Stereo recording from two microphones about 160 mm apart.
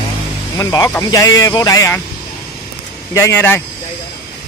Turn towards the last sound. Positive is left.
turn(degrees=15)  # may be behind; listen again after turning